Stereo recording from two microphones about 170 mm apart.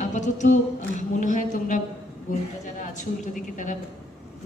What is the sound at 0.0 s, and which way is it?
A woman's voice, 45° left (ahead or behind).